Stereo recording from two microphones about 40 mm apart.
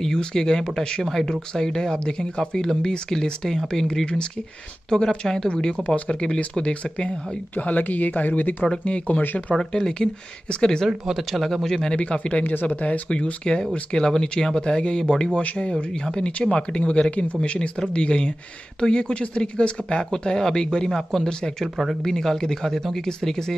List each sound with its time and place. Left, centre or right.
0.0 s speech: centre
3.9 s speech: left
7.5 s speech: left
8.8 s speech: left
9.2 s speech: left
9.6 s speech: centre
11.1 s speech: centre
12.0 s speech: left
12.4 s speech: left
13.1 s speech: left
15.4 s speech: left
20.1 s speech: centre